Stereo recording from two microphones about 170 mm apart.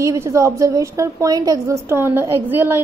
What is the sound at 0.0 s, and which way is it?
A woman's voice, 20° right (ahead or behind).